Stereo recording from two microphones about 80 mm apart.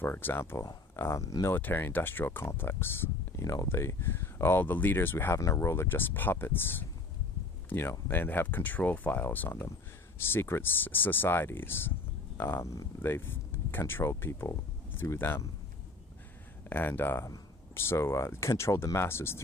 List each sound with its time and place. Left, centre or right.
0.0 s speech: left
1.5 s speech: left
5.4 s speech: left
8.1 s speech: left
16.6 s speech: left